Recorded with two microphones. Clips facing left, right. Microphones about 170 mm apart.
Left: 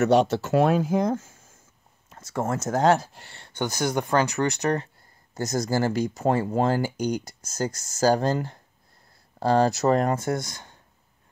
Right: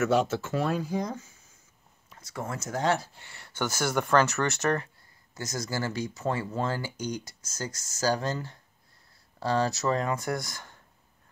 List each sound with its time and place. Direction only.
0.1 s speech: 70° left (ahead or behind); by 0.9 s 90° left
0.9 s speech: 50° left (ahead or behind)
3.3 s speech: 20° left (ahead or behind)
5.5 s speech: 50° left (ahead or behind)
10.1 s speech: 25° left (ahead or behind)